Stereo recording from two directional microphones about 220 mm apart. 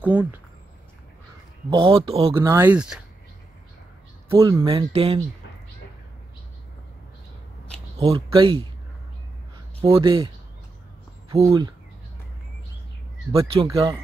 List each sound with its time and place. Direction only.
0.0 s speech: 10° right (ahead or behind)
1.7 s speech: 25° right (ahead or behind)
2.3 s speech: 10° right (ahead or behind)
4.4 s speech: 20° right (ahead or behind)
8.0 s speech: 25° right (ahead or behind)
9.8 s speech: 15° right (ahead or behind)
11.4 s speech: 20° right (ahead or behind)
13.5 s speech: 25° right (ahead or behind)